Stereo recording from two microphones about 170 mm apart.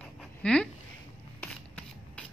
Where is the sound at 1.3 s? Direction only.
10° left (ahead or behind).